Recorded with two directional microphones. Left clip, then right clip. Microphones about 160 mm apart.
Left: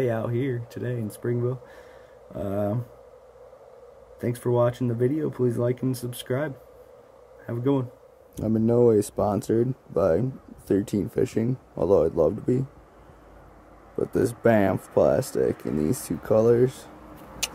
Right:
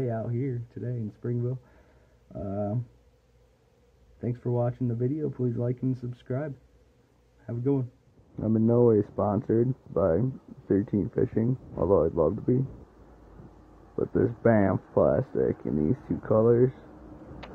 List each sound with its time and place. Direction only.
0.0 s speech: 30° left (ahead or behind)
2.4 s speech: 30° left (ahead or behind)
4.2 s speech: 25° left (ahead or behind)
13.9 s speech: 20° left (ahead or behind)